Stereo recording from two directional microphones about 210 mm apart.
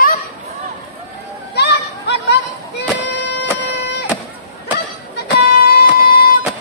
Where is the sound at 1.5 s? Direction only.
55° left (ahead or behind).